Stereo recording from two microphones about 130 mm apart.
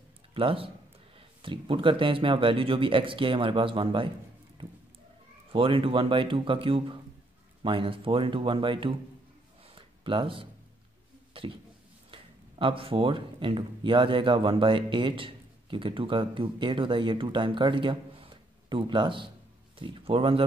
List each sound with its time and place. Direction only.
0.3 s speech: 45° right (ahead or behind)
5.5 s speech: 45° right (ahead or behind)
9.8 s a sound: 40° right (ahead or behind)
12.1 s speech: 40° right (ahead or behind)